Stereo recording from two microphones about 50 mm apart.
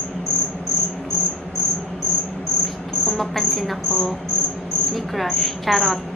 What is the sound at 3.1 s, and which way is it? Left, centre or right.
Speech, centre.